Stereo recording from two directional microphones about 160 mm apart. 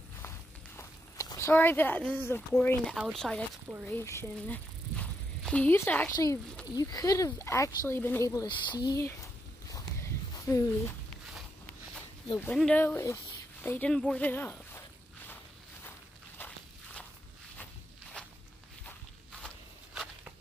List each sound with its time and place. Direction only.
0.2 s walk: 15° left (ahead or behind)
3.0 s speech: centre (ahead or behind)
3.8 s speech: 15° left (ahead or behind)
9.7 s a sound: 20° left (ahead or behind)
12.5 s speech: 5° left (ahead or behind)
16.3 s walk: 10° left (ahead or behind)
18.2 s walk: 5° left (ahead or behind)
19.4 s walk: centre (ahead or behind)